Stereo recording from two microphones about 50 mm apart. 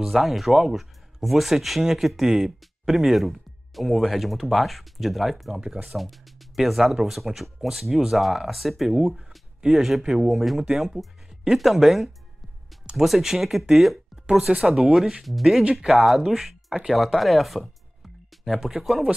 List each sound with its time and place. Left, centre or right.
0.0 s speech: centre
8.9 s speech: centre
14.5 s speech: centre